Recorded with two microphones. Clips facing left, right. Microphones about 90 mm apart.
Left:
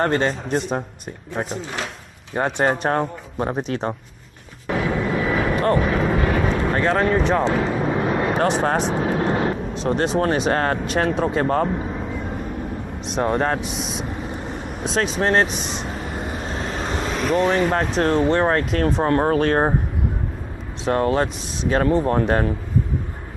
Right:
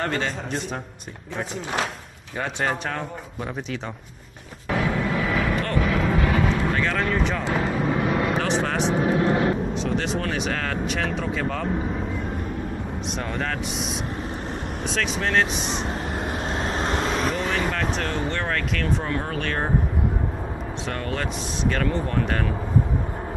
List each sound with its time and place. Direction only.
0.0 s speech: 40° left (ahead or behind)
2.3 s speech: 35° left (ahead or behind)
4.6 s vehicle: 35° left (ahead or behind)
9.8 s speech: 40° left (ahead or behind)
13.2 s speech: 40° left (ahead or behind)
13.6 s speech: centre (ahead or behind)
15.0 s speech: 35° left (ahead or behind)
15.8 s vehicle: centre (ahead or behind)
16.4 s vehicle: 35° right (ahead or behind)
16.8 s vehicle: centre (ahead or behind)
17.6 s speech: 35° left (ahead or behind)
20.8 s speech: 40° left (ahead or behind)